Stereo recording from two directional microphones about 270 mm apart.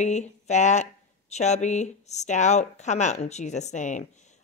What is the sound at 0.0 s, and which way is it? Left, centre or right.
A woman's voice, left.